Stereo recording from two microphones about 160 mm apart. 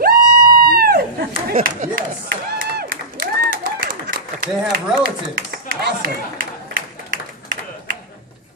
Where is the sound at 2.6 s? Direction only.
70° right (ahead or behind).